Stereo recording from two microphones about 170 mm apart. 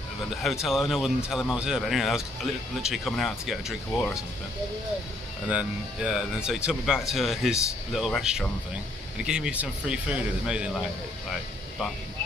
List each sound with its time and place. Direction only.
0.3 s speech: centre (ahead or behind)
5.5 s speech: 5° right (ahead or behind)